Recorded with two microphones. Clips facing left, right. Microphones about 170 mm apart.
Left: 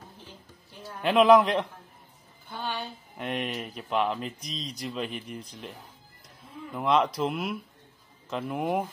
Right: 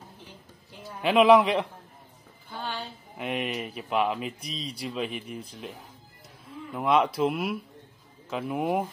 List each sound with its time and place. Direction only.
0.8 s speech: 5° right (ahead or behind)